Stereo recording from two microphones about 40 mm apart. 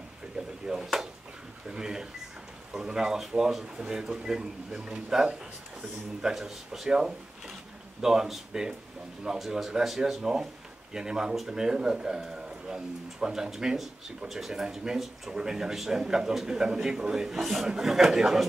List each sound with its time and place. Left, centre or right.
0.7 s speech: centre
6.3 s speech: centre
6.9 s speech: centre
10.9 s speech: centre